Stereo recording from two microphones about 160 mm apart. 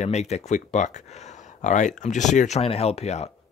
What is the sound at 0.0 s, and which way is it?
Speech, 45° left (ahead or behind).